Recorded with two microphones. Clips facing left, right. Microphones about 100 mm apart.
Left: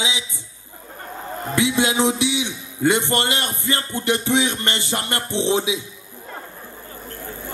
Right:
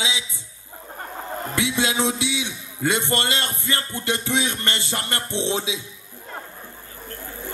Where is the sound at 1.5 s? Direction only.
25° left (ahead or behind).